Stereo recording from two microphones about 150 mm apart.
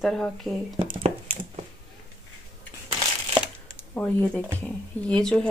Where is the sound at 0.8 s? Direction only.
40° right (ahead or behind).